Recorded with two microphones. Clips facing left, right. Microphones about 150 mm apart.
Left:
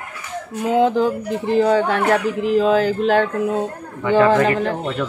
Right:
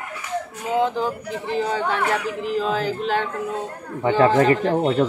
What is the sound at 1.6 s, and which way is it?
Speech, 50° left (ahead or behind).